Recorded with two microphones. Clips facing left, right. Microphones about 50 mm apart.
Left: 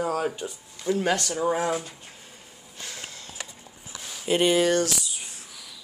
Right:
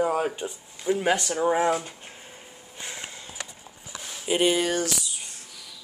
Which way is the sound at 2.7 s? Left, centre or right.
Right.